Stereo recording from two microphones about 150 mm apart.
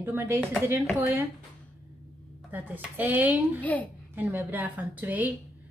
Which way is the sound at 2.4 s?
10° right (ahead or behind).